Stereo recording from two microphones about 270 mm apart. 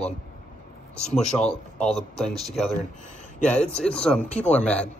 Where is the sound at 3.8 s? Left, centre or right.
Centre.